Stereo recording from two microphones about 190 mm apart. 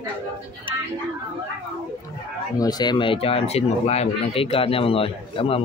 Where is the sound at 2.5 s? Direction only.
20° left (ahead or behind).